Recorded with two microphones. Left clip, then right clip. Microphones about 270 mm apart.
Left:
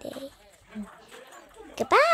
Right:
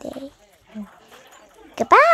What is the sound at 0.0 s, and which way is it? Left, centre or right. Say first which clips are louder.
Wild animals: right 5 dB; centre.